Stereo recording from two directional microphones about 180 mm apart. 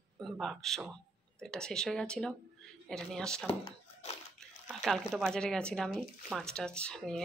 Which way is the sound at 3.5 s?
30° left (ahead or behind).